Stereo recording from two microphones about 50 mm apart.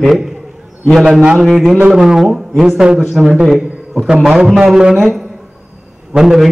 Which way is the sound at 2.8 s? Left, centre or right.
Centre.